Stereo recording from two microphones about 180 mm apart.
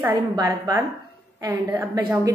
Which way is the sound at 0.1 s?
20° right (ahead or behind).